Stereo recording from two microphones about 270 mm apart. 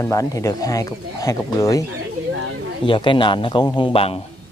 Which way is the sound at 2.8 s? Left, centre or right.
Centre.